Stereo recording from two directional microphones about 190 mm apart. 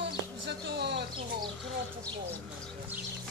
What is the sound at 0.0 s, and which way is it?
Insect, 65° right (ahead or behind).